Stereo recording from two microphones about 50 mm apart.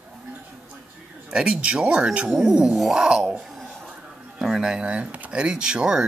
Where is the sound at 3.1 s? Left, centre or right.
Centre.